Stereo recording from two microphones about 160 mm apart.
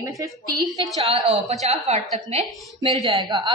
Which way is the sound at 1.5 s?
40° right (ahead or behind).